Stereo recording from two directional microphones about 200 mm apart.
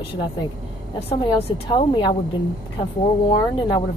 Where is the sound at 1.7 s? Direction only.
25° left (ahead or behind).